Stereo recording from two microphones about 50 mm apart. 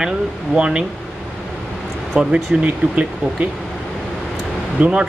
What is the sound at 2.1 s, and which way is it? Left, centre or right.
Speech, right.